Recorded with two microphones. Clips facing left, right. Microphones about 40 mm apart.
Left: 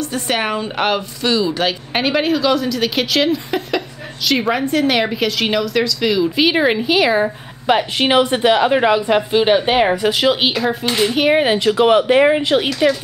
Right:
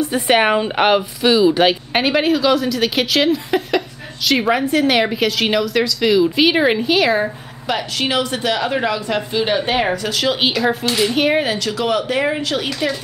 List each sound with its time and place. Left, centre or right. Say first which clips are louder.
0.0 s speech: right 5 dB; centre
2.0 s a woman's voice: left 1 dB; centre
7.6 s speech: left 5 dB; left
10.4 s a woman's voice: even; centre
11.4 s speech: left 6 dB; left
12.6 s speech: left 5 dB; centre